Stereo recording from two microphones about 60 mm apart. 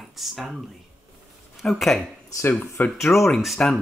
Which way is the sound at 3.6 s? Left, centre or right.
Centre.